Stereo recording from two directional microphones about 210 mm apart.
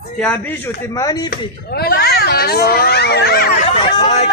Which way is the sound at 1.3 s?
45° left (ahead or behind).